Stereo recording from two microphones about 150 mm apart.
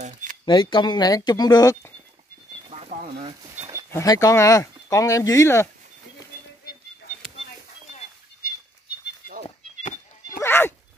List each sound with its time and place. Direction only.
0.0 s shuffling cards: 60° right (ahead or behind)
0.5 s speech: 30° left (ahead or behind)
2.7 s a sound: 50° right (ahead or behind)
3.4 s a sound: 20° right (ahead or behind)
3.9 s speech: 20° left (ahead or behind)
10.4 s dog: 15° left (ahead or behind)